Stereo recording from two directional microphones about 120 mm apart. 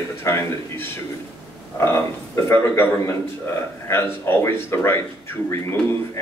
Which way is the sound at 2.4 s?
20° left (ahead or behind).